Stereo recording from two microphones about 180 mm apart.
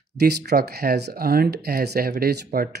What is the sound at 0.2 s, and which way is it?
Speech, 60° right (ahead or behind).